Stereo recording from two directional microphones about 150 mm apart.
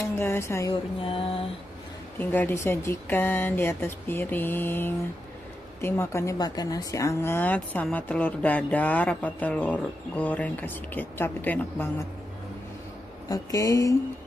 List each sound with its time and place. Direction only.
0.2 s speech: 15° left (ahead or behind)
1.0 s a sound: 35° left (ahead or behind)
2.1 s speech: 15° left (ahead or behind)
13.3 s speech: 20° left (ahead or behind)